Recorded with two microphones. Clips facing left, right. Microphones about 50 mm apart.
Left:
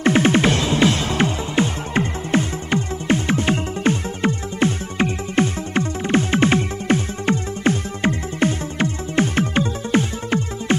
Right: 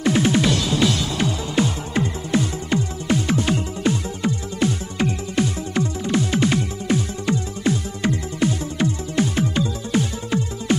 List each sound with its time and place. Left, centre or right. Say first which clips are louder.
0.0 s music: left 3 dB; left